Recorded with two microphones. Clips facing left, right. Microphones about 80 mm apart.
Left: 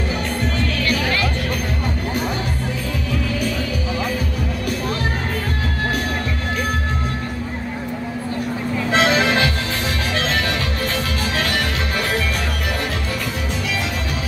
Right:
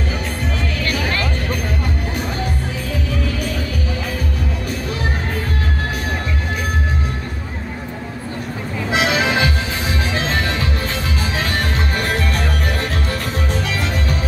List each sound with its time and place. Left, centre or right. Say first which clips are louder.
8.9 s music: left 1 dB; centre